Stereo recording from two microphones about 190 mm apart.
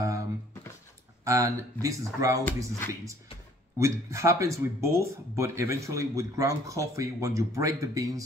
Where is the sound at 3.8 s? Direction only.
15° right (ahead or behind).